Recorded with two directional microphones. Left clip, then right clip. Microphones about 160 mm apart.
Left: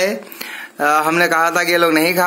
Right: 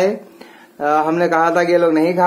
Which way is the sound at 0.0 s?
15° left (ahead or behind).